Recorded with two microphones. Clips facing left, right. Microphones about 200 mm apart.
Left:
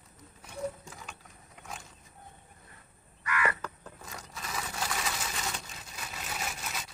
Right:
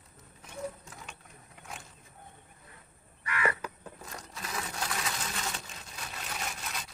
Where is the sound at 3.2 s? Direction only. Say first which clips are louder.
Even; 30° right (ahead or behind).